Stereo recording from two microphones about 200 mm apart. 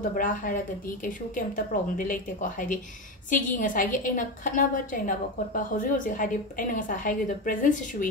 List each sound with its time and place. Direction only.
0.1 s a woman's voice: 40° left (ahead or behind)